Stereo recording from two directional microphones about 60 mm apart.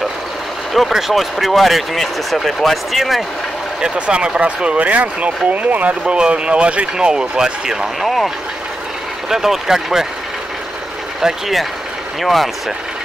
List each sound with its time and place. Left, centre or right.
0.7 s speech: centre
3.8 s speech: centre
9.3 s speech: centre
11.1 s speech: centre